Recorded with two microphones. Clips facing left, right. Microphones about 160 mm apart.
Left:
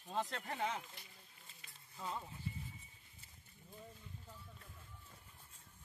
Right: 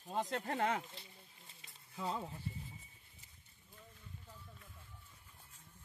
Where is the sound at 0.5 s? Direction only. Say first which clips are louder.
Right 5 dB; 60° right (ahead or behind).